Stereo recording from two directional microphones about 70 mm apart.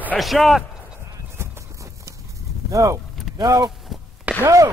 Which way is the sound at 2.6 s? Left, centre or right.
Right.